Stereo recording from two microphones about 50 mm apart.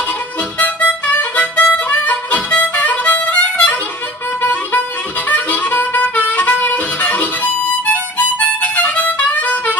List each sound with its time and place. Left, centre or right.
0.6 s harmonica: left